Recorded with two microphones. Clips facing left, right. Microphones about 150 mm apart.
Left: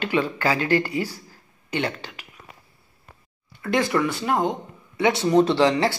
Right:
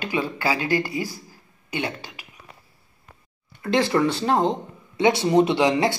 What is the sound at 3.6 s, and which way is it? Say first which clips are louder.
Speech: right 2 dB; 25° right (ahead or behind).